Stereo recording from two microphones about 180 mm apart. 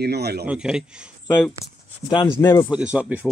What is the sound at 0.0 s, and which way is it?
Speech, 65° right (ahead or behind).